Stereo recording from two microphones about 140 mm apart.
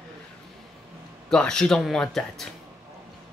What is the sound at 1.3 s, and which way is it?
Speech, 5° left (ahead or behind).